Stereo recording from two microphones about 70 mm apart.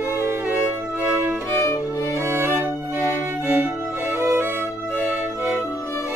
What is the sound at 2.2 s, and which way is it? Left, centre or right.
Music, right.